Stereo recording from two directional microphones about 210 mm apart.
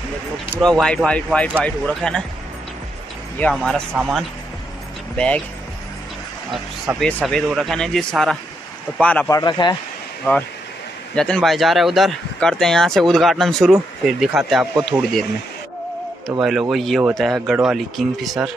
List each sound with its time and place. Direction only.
0.6 s speech: centre (ahead or behind)
3.3 s speech: 5° left (ahead or behind)
3.9 s speech: 5° right (ahead or behind)
5.1 s speech: 5° left (ahead or behind)
6.5 s speech: centre (ahead or behind)
9.4 s speech: 20° left (ahead or behind); by 15.2 s centre (ahead or behind)
16.3 s speech: centre (ahead or behind)